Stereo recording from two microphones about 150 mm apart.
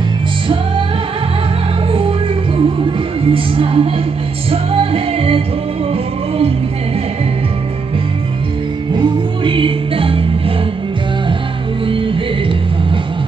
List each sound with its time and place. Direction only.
1.9 s music: 35° right (ahead or behind)
8.9 s music: 35° right (ahead or behind)